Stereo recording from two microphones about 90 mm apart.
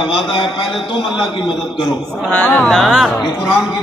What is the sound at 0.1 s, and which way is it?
Speech, 65° left (ahead or behind).